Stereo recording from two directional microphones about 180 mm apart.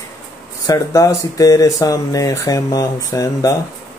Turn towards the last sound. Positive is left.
turn(degrees=20)  # may be behind; listen again after turning